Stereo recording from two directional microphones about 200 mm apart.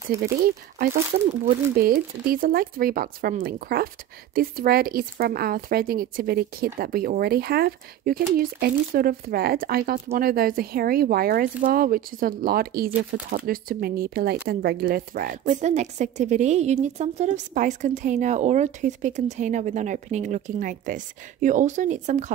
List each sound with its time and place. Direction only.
1.8 s a woman's voice: 45° right (ahead or behind)